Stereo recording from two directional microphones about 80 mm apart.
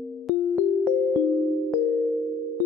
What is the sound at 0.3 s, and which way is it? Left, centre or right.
Keyboard, centre.